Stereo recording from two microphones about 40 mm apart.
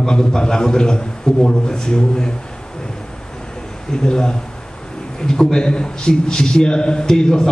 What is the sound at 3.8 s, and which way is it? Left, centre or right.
A man's voice, centre.